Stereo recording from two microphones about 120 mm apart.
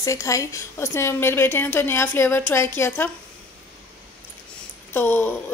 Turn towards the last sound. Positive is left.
turn(degrees=15)  # may be behind; listen again after turning